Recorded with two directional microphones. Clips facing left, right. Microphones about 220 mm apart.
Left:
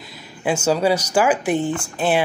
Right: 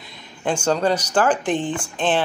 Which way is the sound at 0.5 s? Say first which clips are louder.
Left 2 dB; 10° left (ahead or behind).